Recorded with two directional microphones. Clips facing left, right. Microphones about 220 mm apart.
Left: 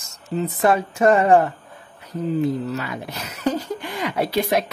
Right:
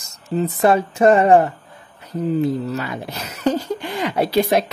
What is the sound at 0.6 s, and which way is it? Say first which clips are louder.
Speech: right 3 dB; 25° right (ahead or behind).